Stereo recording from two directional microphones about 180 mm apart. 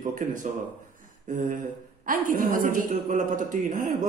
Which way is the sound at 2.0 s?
50° right (ahead or behind).